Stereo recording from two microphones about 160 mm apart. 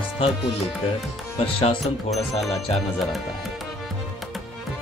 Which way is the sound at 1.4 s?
35° left (ahead or behind).